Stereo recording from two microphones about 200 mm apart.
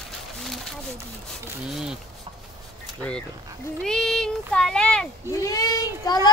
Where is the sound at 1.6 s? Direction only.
5° right (ahead or behind).